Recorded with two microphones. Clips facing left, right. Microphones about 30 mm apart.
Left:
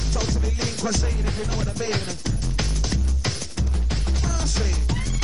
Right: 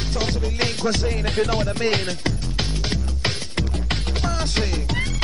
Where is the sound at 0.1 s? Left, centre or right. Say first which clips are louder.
Right 2 dB; right.